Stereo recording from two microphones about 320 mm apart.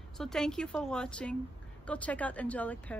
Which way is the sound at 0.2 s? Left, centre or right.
Centre.